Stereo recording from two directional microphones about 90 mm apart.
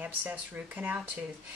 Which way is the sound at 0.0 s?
20° right (ahead or behind).